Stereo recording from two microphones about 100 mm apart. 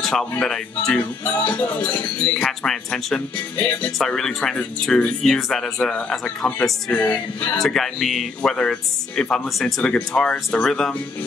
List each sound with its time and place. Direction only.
0.0 s speech: 5° left (ahead or behind)
1.2 s speech: 15° left (ahead or behind)
7.5 s speech: 5° left (ahead or behind)